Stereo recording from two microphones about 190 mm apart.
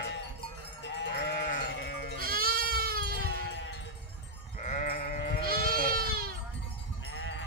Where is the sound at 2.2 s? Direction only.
50° right (ahead or behind).